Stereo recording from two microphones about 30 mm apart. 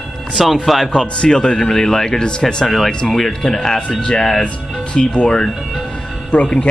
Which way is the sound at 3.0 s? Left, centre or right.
Centre.